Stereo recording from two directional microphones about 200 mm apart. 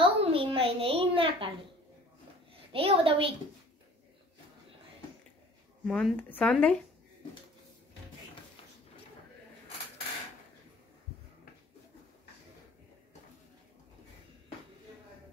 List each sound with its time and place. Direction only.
0.0 s a sound: 30° right (ahead or behind)
2.7 s a woman's voice: 30° right (ahead or behind)
5.9 s speech: centre (ahead or behind)